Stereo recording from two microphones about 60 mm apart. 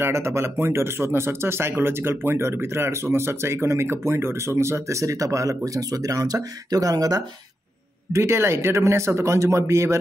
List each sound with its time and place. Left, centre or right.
0.0 s speech: right
8.1 s speech: right